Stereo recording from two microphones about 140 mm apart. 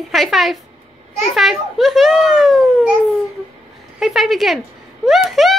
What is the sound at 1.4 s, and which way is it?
Speech, centre (ahead or behind).